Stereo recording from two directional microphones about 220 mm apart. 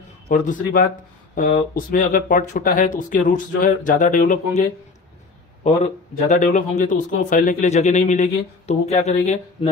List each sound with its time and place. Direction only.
0.3 s a man's voice: 35° left (ahead or behind)